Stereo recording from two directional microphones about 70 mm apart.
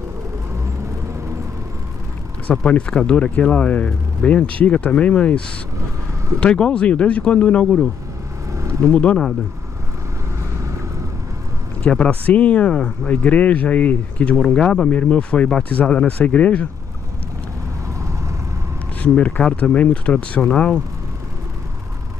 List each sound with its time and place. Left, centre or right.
2.5 s speech: centre
6.4 s speech: centre
8.5 s a sound: right
8.9 s speech: centre
11.8 s speech: centre
18.9 s speech: centre